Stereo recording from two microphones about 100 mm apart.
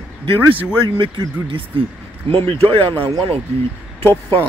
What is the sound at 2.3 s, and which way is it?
Speech, 70° right (ahead or behind).